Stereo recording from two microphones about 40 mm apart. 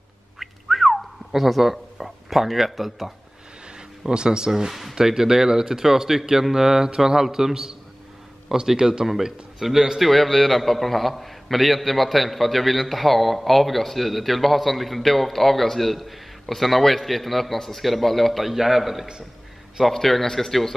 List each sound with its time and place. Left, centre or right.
0.4 s a sound: centre
4.1 s speech: centre
4.6 s speech: centre
9.9 s a man's voice: centre
18.5 s speech: centre
19.9 s a man's voice: centre